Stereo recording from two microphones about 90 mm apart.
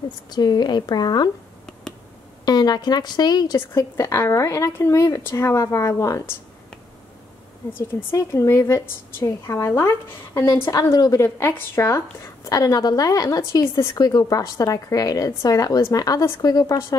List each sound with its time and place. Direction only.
0.3 s speech: 55° left (ahead or behind)
2.4 s speech: 50° left (ahead or behind)
3.5 s a woman's voice: 30° left (ahead or behind)
7.7 s a woman's voice: 30° left (ahead or behind)
11.2 s a woman's voice: 25° left (ahead or behind)
12.4 s a woman's voice: 40° left (ahead or behind)
13.9 s speech: 45° left (ahead or behind)